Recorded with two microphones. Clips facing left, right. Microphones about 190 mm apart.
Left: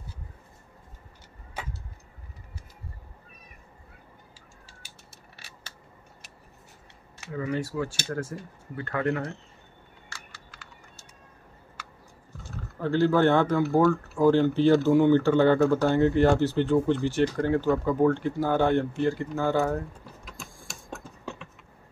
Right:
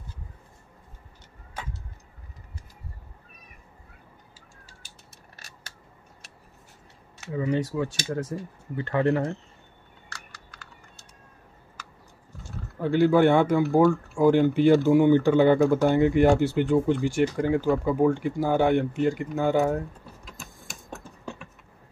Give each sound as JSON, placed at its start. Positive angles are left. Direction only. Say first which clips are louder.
{"t": 7.3, "sound": "speech", "louder": "right 3 dB", "side_deg": -20}
{"t": 12.7, "sound": "speech", "louder": "right 3 dB", "side_deg": -15}
{"t": 20.9, "sound": "a sound", "louder": "even", "side_deg": -10}